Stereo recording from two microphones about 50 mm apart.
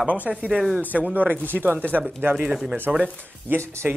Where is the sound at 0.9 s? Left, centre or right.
Right.